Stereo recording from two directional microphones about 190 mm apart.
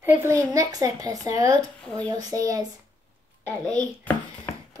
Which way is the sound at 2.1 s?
20° right (ahead or behind).